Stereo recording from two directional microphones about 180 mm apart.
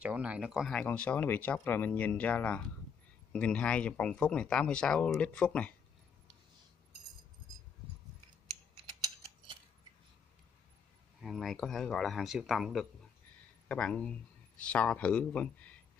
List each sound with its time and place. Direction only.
0.0 s speech: 5° right (ahead or behind)
8.8 s a sound: 30° right (ahead or behind)
11.1 s speech: centre (ahead or behind)